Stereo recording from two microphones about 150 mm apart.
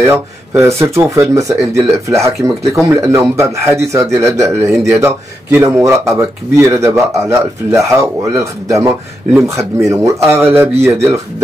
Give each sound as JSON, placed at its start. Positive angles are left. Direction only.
{"t": 0.0, "sound": "speech", "side_deg": -20}